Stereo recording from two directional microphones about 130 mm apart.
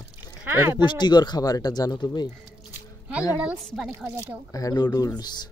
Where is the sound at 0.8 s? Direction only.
35° left (ahead or behind).